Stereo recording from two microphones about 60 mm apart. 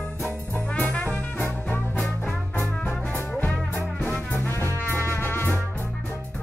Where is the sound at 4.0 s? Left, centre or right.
Centre.